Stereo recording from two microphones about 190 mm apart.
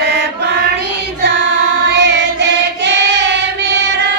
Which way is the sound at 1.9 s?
65° right (ahead or behind).